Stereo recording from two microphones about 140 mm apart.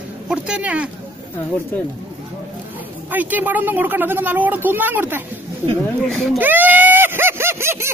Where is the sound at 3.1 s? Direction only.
10° right (ahead or behind).